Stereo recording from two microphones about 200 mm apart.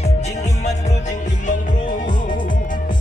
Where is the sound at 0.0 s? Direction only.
35° left (ahead or behind).